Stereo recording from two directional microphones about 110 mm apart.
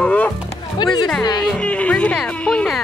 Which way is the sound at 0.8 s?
40° left (ahead or behind).